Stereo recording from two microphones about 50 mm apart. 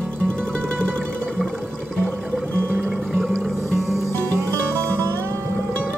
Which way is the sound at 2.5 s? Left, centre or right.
Right.